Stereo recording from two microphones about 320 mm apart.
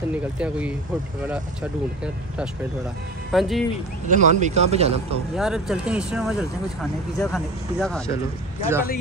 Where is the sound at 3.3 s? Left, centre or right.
Centre.